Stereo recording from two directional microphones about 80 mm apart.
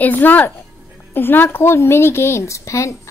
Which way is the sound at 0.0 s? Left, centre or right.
Left.